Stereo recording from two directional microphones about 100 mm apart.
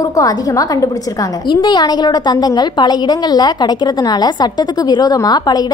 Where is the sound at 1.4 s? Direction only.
45° left (ahead or behind).